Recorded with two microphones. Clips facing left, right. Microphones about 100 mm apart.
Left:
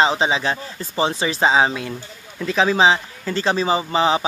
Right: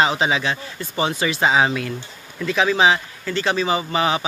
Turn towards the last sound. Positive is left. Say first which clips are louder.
# left 2 dB
turn(degrees=30)  # may be behind; listen again after turning